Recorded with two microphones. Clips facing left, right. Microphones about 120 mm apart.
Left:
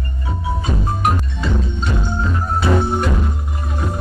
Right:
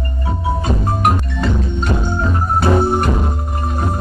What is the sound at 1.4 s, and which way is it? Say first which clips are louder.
Music: right 3 dB; 45° right (ahead or behind).